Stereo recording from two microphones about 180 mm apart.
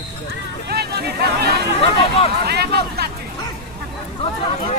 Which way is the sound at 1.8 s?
35° left (ahead or behind).